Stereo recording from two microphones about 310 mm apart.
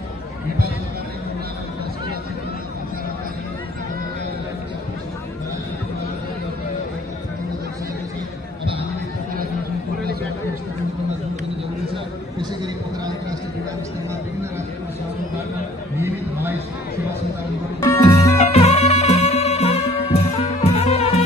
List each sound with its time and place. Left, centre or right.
17.7 s music: centre